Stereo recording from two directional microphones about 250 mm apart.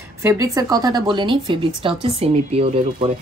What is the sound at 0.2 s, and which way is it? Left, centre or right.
Speech, centre.